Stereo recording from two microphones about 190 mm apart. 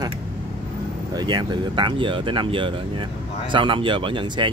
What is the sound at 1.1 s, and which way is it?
Speech, 20° right (ahead or behind).